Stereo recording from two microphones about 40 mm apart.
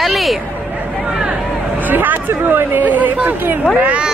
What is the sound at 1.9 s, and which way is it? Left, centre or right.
Speech, right.